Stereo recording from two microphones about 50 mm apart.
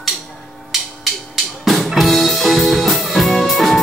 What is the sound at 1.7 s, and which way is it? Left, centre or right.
Music, centre.